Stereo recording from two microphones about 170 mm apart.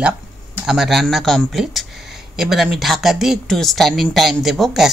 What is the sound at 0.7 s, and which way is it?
Speech, centre (ahead or behind).